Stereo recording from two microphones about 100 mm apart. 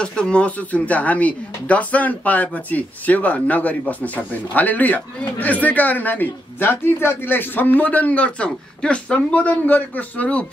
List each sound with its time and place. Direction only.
0.0 s speech: 10° left (ahead or behind)